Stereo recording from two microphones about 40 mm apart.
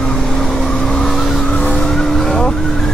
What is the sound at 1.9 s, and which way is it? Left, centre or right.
Vehicle, centre.